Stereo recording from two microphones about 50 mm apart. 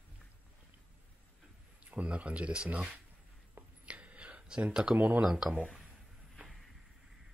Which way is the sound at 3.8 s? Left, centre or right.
Right.